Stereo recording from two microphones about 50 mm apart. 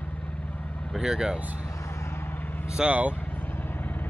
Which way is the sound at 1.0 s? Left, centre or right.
Centre.